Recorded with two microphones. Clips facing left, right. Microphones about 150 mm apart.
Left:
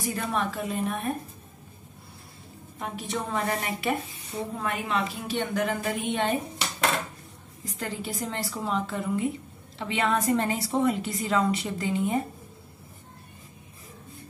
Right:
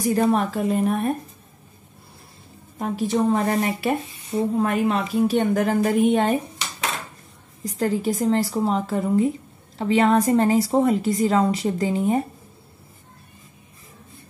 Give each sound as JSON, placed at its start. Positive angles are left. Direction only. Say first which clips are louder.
{"t": 0.0, "sound": "a woman's voice", "louder": "right 9 dB", "side_deg": -40}
{"t": 2.8, "sound": "a woman's voice", "louder": "right 11 dB", "side_deg": -35}
{"t": 7.6, "sound": "a woman's voice", "louder": "right 11 dB", "side_deg": -40}